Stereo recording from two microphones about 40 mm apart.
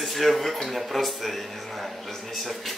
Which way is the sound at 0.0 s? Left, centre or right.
Centre.